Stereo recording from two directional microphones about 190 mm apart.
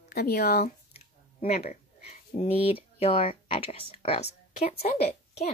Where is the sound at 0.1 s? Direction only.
55° left (ahead or behind).